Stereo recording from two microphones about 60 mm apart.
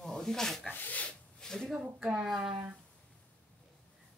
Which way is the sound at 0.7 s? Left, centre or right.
Left.